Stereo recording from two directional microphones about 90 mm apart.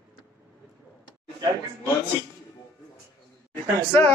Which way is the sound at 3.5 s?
20° left (ahead or behind).